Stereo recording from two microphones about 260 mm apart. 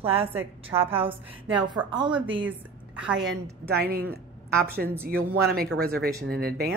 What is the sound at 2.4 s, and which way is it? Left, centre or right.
Speech, centre.